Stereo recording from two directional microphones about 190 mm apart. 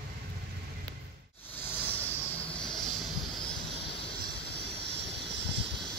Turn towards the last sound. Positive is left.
turn(degrees=-65)  # may be behind; listen again after turning